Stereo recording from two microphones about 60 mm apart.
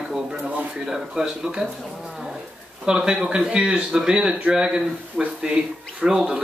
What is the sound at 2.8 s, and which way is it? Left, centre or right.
Speech, centre.